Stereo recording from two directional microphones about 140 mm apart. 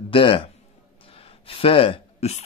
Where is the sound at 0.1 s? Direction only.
40° left (ahead or behind).